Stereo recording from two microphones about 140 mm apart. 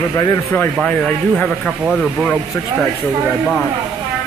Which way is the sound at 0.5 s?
10° left (ahead or behind).